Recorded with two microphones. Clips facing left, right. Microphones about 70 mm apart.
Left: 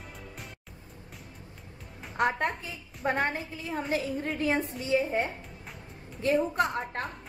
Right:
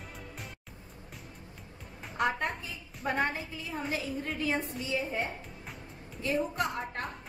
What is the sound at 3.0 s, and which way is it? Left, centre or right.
A woman's voice, left.